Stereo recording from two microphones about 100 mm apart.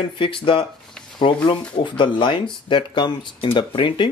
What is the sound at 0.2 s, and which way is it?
Speech, 60° left (ahead or behind).